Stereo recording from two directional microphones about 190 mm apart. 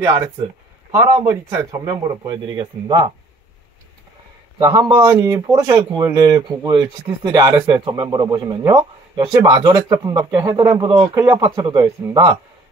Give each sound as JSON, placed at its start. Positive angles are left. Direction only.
{"t": 0.9, "sound": "speech", "side_deg": -15}
{"t": 4.6, "sound": "speech", "side_deg": -20}
{"t": 5.1, "sound": "speech", "side_deg": -10}
{"t": 5.5, "sound": "speech", "side_deg": -20}